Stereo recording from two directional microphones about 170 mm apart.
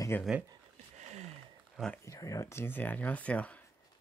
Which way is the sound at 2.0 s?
20° left (ahead or behind).